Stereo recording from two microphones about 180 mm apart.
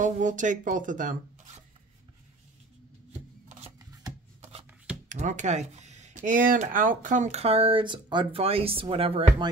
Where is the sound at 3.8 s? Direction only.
20° right (ahead or behind).